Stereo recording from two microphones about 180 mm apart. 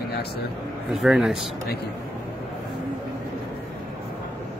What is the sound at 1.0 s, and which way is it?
Speech, 5° right (ahead or behind).